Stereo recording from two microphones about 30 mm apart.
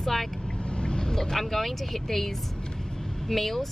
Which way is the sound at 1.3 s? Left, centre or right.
Centre.